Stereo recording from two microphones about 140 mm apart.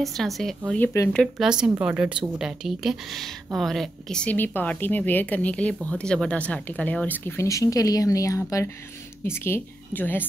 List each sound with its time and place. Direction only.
0.0 s a woman's voice: centre (ahead or behind)
0.7 s speech: 15° left (ahead or behind)
1.1 s a woman's voice: centre (ahead or behind)